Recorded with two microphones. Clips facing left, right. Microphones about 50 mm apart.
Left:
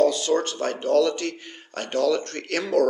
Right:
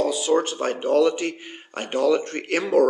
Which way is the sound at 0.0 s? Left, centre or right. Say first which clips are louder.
Even; centre.